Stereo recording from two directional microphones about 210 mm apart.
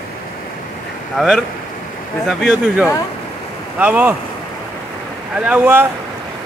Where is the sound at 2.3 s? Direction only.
Centre (ahead or behind).